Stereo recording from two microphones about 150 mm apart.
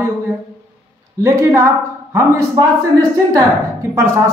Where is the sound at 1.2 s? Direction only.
20° right (ahead or behind).